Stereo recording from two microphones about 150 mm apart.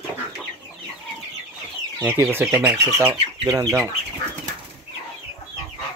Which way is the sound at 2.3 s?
15° right (ahead or behind).